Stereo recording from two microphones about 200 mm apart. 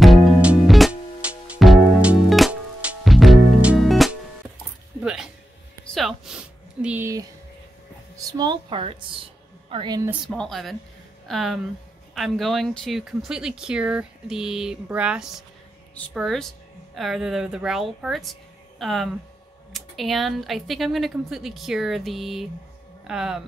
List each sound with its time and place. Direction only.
0.0 s music: 5° right (ahead or behind)
5.0 s a sound: 5° right (ahead or behind)
8.3 s speech: 20° right (ahead or behind)
10.2 s speech: centre (ahead or behind)